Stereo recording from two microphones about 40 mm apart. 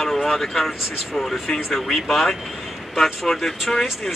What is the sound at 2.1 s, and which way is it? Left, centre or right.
Speech, centre.